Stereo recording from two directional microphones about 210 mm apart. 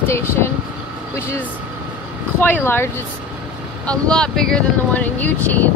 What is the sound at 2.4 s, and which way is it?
Speech, 10° left (ahead or behind).